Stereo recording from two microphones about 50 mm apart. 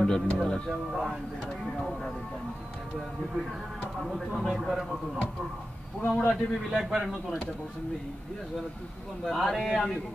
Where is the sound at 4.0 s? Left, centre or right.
Centre.